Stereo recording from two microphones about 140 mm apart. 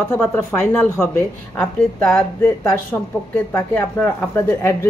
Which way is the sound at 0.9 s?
15° left (ahead or behind).